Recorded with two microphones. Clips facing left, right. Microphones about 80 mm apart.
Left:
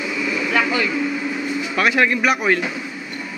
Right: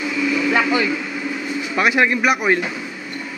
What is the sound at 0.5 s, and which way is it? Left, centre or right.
Vehicle, centre.